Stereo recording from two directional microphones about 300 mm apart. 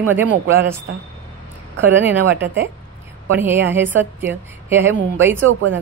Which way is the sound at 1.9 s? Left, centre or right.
Centre.